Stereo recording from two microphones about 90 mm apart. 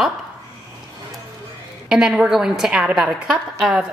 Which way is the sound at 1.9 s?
5° right (ahead or behind).